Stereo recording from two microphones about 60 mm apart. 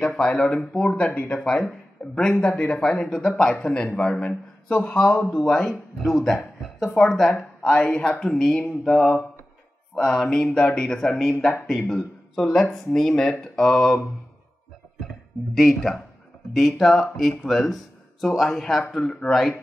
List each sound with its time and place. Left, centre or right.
0.0 s a man's voice: centre
7.3 s a man's voice: centre
15.5 s speech: centre